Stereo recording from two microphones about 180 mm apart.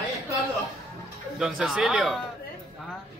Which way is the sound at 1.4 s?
Centre (ahead or behind).